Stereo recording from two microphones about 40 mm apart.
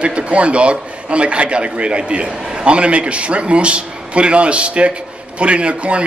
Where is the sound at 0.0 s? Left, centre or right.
Right.